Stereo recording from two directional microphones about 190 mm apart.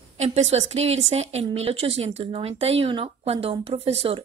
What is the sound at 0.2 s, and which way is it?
A woman's voice, 35° right (ahead or behind).